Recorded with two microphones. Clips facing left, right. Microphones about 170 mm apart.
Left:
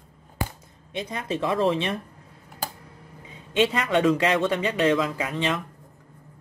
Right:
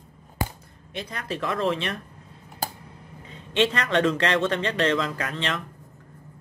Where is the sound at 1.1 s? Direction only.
20° left (ahead or behind).